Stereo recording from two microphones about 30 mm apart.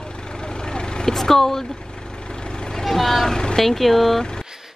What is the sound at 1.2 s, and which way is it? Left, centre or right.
Speech, centre.